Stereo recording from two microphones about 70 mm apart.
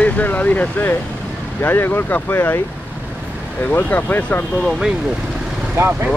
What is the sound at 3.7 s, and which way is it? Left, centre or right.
Speech, left.